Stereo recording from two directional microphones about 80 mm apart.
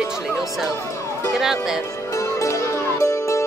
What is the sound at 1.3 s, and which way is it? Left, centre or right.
Speech, centre.